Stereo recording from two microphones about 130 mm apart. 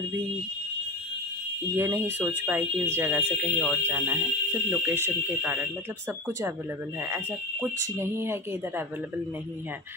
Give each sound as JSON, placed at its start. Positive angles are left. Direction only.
{"t": 1.8, "sound": "speech", "side_deg": -20}
{"t": 7.0, "sound": "speech", "side_deg": -15}